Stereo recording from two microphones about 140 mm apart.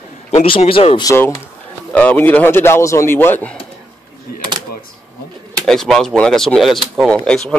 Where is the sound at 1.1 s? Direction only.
20° left (ahead or behind).